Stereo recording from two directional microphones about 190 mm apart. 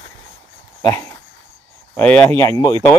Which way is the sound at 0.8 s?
15° left (ahead or behind).